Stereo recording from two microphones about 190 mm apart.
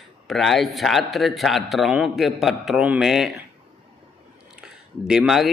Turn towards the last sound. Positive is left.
turn(degrees=0)  # may be behind; listen again after turning